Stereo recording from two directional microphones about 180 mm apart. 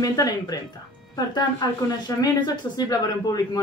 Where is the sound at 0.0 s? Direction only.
20° left (ahead or behind).